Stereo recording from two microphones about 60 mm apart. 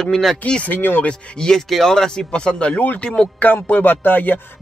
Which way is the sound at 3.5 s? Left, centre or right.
Left.